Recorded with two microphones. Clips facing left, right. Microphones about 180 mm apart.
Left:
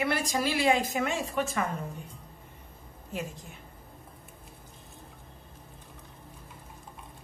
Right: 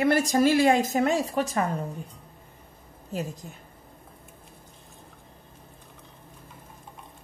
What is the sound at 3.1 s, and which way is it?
Speech, 40° right (ahead or behind).